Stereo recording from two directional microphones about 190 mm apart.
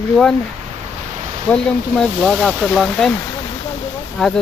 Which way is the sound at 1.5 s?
Centre (ahead or behind).